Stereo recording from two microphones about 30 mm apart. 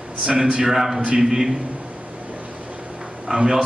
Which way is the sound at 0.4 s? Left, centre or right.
Right.